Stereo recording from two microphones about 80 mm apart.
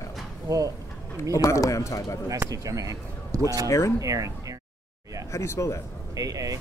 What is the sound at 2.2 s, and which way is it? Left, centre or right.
Speech, right.